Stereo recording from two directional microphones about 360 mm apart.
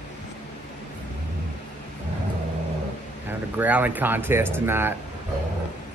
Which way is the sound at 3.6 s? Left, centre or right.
Centre.